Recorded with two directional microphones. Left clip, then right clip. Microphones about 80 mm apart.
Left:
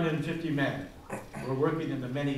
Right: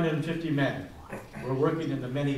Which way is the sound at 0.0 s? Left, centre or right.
Centre.